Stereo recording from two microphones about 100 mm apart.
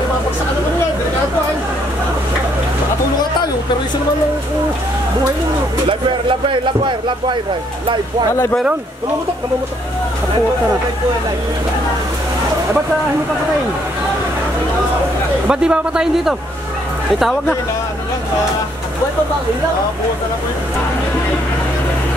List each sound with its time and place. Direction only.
5.9 s speech: 60° right (ahead or behind)
15.4 s speech: 10° right (ahead or behind)